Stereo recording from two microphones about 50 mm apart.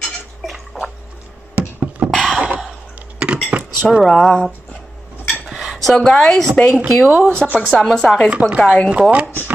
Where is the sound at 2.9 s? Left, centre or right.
Right.